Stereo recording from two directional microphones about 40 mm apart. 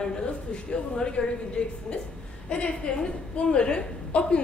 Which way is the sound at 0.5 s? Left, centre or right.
Left.